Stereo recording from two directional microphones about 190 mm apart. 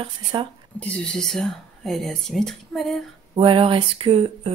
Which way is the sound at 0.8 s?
5° left (ahead or behind).